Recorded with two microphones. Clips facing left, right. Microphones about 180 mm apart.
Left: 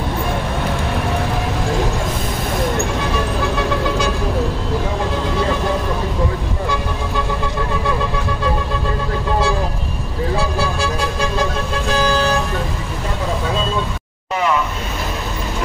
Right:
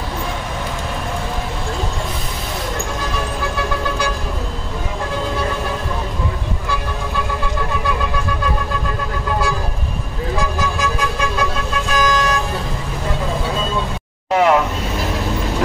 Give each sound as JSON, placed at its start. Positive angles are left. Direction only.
{"t": 10.8, "sound": "a sound", "side_deg": 30}
{"t": 11.9, "sound": "vehicle", "side_deg": 30}
{"t": 14.3, "sound": "vehicle", "side_deg": -75}